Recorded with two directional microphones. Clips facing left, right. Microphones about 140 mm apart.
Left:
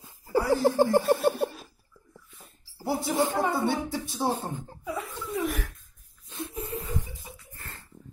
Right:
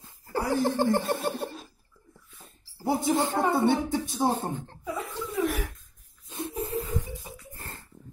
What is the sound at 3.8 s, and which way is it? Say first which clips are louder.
Speech: right 4 dB; 55° right (ahead or behind).